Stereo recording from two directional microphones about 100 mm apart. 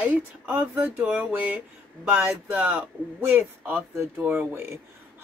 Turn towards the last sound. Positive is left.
turn(degrees=-20)  # may be behind; listen again after turning